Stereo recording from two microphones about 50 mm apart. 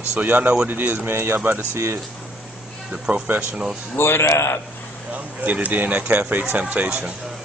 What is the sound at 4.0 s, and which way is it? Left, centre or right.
Speech, left.